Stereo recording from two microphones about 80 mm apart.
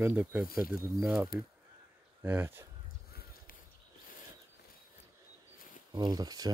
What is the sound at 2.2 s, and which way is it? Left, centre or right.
Speech, right.